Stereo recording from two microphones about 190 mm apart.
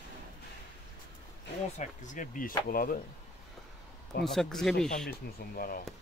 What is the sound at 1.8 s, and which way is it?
Speech, 45° left (ahead or behind).